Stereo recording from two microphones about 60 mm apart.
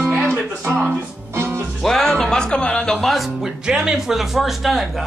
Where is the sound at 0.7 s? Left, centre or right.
Right.